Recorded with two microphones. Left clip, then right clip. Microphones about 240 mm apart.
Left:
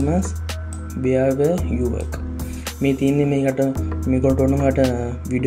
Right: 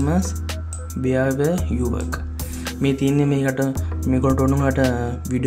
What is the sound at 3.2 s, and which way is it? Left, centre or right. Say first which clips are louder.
Speech: left 2 dB; right.